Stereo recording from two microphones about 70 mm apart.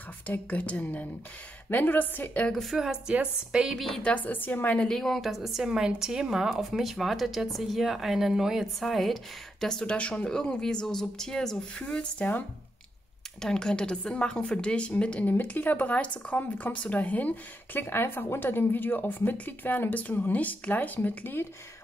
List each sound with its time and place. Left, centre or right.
0.3 s a woman's voice: centre
2.5 s a woman's voice: centre
4.0 s a woman's voice: left
4.8 s a woman's voice: centre
13.4 s a woman's voice: centre; by 21.5 s left